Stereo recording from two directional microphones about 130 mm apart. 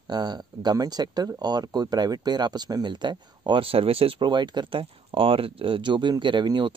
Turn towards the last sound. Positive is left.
turn(degrees=-35)  # may be behind; listen again after turning